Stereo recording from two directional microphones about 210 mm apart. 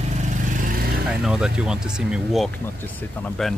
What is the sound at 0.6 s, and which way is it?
Vehicle, 45° right (ahead or behind).